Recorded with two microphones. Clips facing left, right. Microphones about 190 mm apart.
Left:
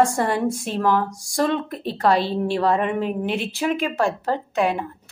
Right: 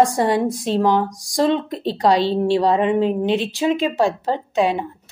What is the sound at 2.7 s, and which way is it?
Speech, 30° right (ahead or behind).